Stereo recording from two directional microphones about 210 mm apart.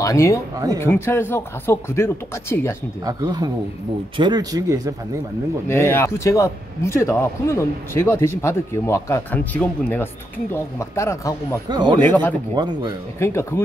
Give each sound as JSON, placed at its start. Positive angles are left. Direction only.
{"t": 0.0, "sound": "a man's voice", "side_deg": 15}
{"t": 3.1, "sound": "speech", "side_deg": -15}
{"t": 5.7, "sound": "a man's voice", "side_deg": 10}
{"t": 11.7, "sound": "speech", "side_deg": -20}
{"t": 12.0, "sound": "a man's voice", "side_deg": 10}
{"t": 12.5, "sound": "speech", "side_deg": -20}
{"t": 13.2, "sound": "a man's voice", "side_deg": 10}